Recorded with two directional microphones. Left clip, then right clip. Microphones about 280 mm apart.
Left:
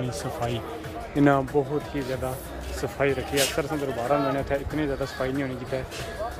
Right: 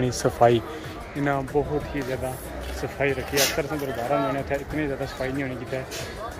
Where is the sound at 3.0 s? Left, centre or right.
Centre.